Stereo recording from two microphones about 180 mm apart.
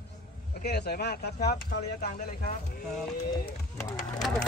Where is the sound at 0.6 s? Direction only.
60° left (ahead or behind).